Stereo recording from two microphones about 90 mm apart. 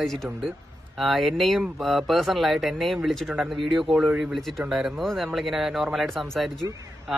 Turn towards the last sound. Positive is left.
turn(degrees=0)  # may be behind; listen again after turning